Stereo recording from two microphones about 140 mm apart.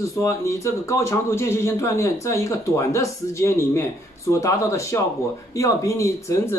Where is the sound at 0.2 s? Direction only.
20° left (ahead or behind).